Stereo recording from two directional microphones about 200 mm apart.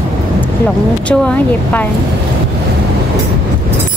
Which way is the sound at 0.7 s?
5° left (ahead or behind).